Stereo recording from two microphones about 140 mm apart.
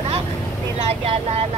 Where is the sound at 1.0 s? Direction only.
45° right (ahead or behind).